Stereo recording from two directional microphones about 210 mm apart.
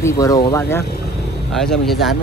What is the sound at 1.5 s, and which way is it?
Speech, centre (ahead or behind).